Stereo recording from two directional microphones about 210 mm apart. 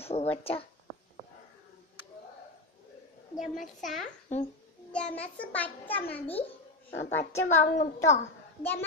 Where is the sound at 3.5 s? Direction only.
Centre (ahead or behind).